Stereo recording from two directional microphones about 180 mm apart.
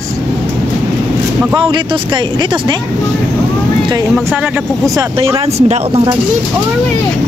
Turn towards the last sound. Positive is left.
turn(degrees=-35)  # may be behind; listen again after turning